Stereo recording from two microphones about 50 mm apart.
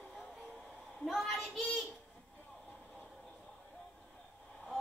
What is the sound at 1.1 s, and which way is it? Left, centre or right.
Child singing, centre.